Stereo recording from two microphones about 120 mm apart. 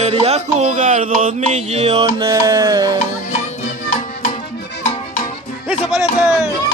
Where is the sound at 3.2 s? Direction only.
90° left.